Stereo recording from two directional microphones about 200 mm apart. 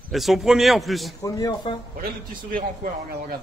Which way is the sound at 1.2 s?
20° left (ahead or behind).